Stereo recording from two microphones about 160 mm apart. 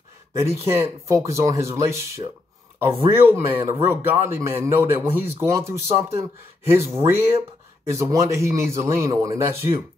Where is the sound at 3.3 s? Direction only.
15° right (ahead or behind).